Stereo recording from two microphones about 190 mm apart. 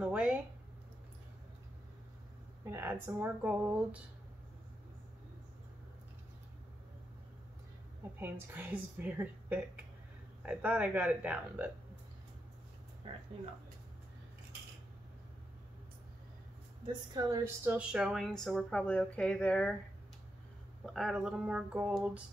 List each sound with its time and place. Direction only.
0.0 s a sound: 5° right (ahead or behind)
2.6 s speech: 10° right (ahead or behind)
8.2 s speech: 10° right (ahead or behind)
13.0 s a woman's voice: 30° right (ahead or behind)
16.8 s a woman's voice: 20° right (ahead or behind)
17.6 s a woman's voice: 5° right (ahead or behind)
20.8 s a woman's voice: centre (ahead or behind)